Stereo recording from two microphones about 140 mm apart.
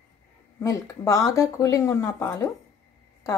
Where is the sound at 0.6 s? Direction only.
20° left (ahead or behind).